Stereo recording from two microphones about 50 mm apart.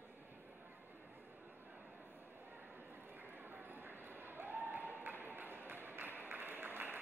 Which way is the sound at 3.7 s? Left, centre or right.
Right.